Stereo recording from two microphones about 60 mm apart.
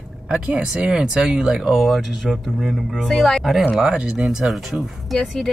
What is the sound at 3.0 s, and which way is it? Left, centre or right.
Speech, centre.